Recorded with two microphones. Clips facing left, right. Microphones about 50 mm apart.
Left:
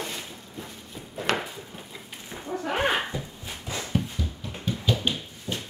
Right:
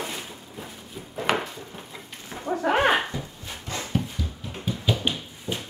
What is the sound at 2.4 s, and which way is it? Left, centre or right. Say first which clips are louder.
Dog: right 5 dB; right.